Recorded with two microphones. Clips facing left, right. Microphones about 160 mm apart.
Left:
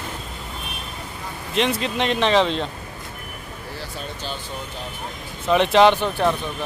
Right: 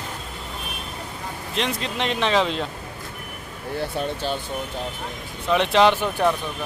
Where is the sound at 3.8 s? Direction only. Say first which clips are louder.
Right 9 dB; 60° right (ahead or behind).